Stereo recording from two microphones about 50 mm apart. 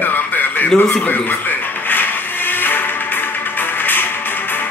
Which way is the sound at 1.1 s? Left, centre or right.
Left.